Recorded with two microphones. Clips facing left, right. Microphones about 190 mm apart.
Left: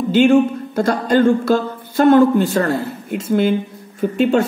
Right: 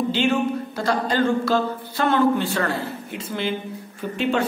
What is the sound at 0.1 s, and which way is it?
Speech, 45° left (ahead or behind).